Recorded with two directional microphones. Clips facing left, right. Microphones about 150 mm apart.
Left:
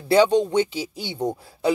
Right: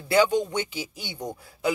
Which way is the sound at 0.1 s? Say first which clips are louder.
Left 5 dB; 30° left (ahead or behind).